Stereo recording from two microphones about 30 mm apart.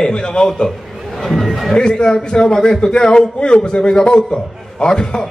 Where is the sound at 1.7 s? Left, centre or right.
Left.